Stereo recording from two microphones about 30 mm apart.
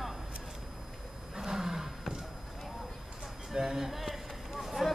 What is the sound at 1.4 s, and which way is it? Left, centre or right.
Roar, centre.